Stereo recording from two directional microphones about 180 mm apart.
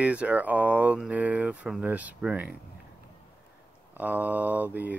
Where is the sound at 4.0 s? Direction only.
10° right (ahead or behind).